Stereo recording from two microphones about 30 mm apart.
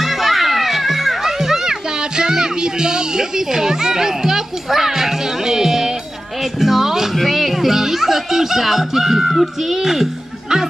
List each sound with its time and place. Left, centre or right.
0.0 s music: centre
2.0 s music: right
7.2 s speech: centre